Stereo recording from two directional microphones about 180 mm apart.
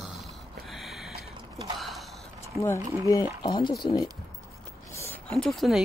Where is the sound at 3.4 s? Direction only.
25° left (ahead or behind).